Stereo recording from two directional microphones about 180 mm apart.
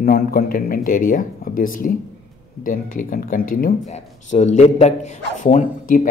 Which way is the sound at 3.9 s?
40° left (ahead or behind).